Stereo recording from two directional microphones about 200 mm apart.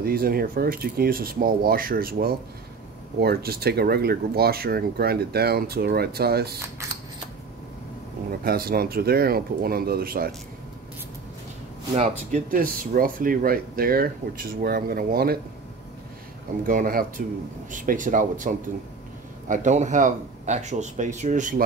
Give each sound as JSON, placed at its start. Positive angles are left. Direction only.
{"t": 0.0, "sound": "speech", "side_deg": -45}
{"t": 8.5, "sound": "speech", "side_deg": -50}
{"t": 11.9, "sound": "speech", "side_deg": -35}
{"t": 16.6, "sound": "speech", "side_deg": -45}